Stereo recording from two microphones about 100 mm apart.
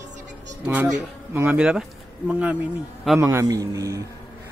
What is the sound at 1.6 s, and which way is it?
Speech, 10° right (ahead or behind).